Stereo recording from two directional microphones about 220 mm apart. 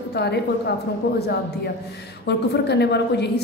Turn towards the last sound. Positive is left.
turn(degrees=50)  # may be behind; listen again after turning